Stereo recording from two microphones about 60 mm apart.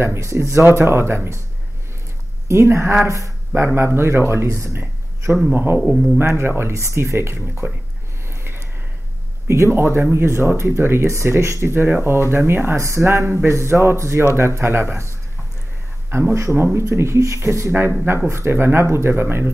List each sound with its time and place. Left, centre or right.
0.0 s speech: right
2.4 s speech: right
3.1 s speech: right
3.5 s speech: right
5.5 s speech: right
5.8 s speech: centre
6.1 s speech: right
9.5 s speech: right
16.1 s speech: right